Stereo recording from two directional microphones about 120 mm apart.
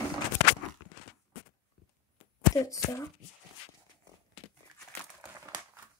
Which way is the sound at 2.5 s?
25° left (ahead or behind).